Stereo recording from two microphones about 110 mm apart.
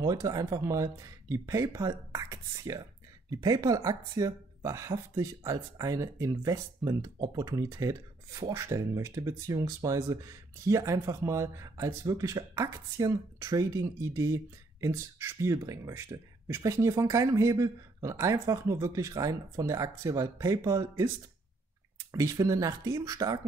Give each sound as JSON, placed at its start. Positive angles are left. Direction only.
{"t": 0.0, "sound": "speech", "side_deg": -35}